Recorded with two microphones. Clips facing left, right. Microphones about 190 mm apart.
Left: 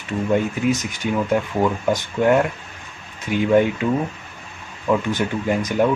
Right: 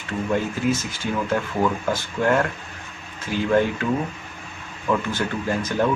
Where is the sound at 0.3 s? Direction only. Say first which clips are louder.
Left 3 dB; 20° left (ahead or behind).